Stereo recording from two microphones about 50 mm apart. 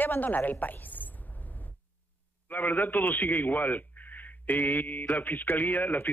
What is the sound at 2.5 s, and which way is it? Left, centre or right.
A man's voice, left.